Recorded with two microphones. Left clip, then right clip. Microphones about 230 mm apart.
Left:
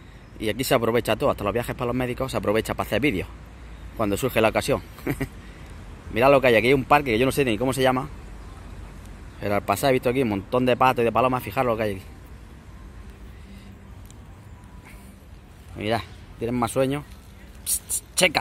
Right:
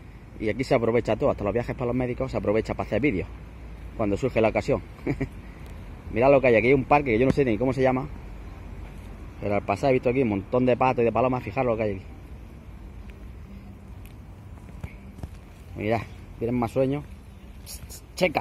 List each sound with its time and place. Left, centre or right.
0.4 s speech: centre
9.4 s speech: left
15.9 s speech: centre
17.6 s a sound: centre